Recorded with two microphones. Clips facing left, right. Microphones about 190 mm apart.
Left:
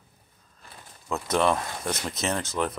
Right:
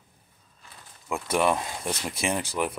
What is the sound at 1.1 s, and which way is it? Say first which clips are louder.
Speech: even; 10° right (ahead or behind).